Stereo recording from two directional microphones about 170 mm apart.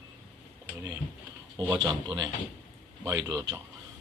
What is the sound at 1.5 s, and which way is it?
Speech, 25° right (ahead or behind).